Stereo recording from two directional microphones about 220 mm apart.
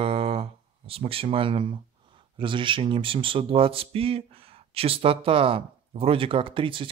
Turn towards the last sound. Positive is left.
turn(degrees=-25)  # may be behind; listen again after turning